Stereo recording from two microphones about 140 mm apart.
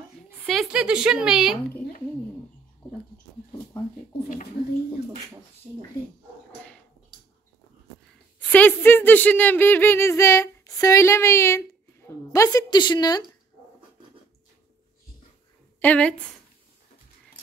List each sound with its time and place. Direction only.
0.5 s speech: centre (ahead or behind)
8.5 s speech: 10° left (ahead or behind); by 13.2 s 30° left (ahead or behind)
15.8 s a woman's voice: 10° left (ahead or behind)